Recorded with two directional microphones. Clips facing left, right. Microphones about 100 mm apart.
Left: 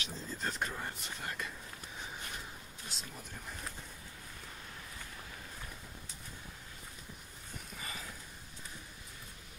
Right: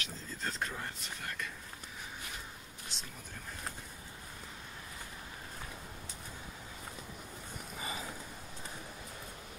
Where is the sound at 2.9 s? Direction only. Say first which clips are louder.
Even; 5° left (ahead or behind).